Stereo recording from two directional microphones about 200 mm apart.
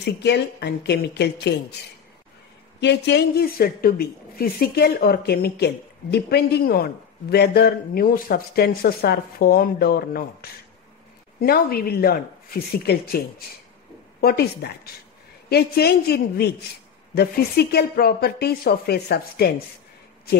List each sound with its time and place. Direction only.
0.0 s speech: 55° left (ahead or behind)
2.8 s a woman's voice: 60° left (ahead or behind)
11.3 s a woman's voice: 50° left (ahead or behind)
14.2 s a woman's voice: 55° left (ahead or behind)